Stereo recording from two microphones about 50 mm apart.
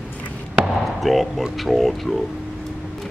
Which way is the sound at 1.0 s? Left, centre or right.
Centre.